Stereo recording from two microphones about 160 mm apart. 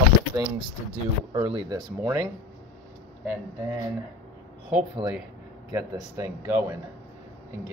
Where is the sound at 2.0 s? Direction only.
20° right (ahead or behind).